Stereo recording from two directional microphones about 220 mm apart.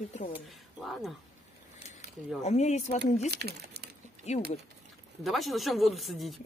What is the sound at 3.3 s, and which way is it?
Speech, 50° right (ahead or behind).